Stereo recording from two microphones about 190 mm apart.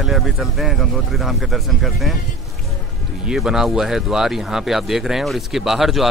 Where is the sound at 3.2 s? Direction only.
5° right (ahead or behind).